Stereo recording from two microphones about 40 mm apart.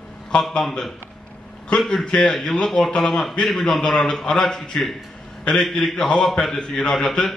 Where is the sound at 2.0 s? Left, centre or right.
Centre.